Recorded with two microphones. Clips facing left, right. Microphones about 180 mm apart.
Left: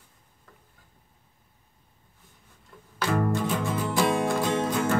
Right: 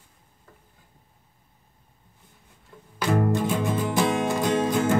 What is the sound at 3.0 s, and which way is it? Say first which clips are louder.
Music: right 3 dB; 15° right (ahead or behind).